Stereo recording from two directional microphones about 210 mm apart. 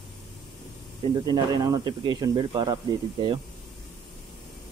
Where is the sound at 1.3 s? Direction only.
20° right (ahead or behind).